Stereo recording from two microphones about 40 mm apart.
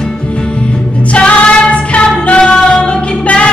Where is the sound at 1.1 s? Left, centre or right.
Left.